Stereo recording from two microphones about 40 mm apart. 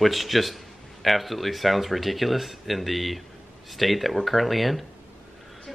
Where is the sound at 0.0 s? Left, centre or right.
Centre.